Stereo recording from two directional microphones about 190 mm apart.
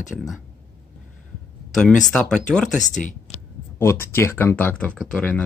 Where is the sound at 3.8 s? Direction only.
15° left (ahead or behind).